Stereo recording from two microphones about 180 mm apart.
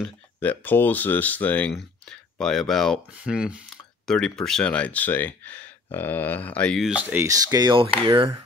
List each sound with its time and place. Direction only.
0.0 s speech: 10° left (ahead or behind)
6.9 s speech: 10° right (ahead or behind)
7.2 s speech: 20° right (ahead or behind)